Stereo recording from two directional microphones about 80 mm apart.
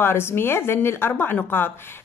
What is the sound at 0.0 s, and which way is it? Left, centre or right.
A woman's voice, left.